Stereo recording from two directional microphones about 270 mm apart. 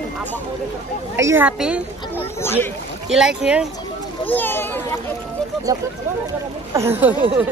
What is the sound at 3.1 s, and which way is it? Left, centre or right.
A child's voice, centre.